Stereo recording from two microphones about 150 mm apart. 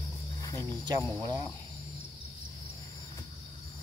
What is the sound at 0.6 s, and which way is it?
Snake, 30° right (ahead or behind).